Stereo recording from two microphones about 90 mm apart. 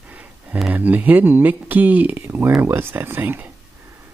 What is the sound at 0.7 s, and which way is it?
Speech, 20° right (ahead or behind).